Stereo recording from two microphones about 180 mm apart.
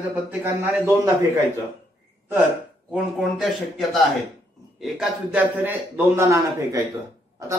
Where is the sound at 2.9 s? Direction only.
Centre (ahead or behind); by 6.7 s 15° right (ahead or behind).